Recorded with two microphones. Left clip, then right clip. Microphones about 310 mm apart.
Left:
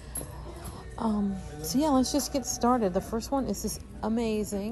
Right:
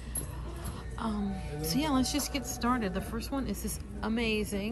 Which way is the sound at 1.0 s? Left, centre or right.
Centre.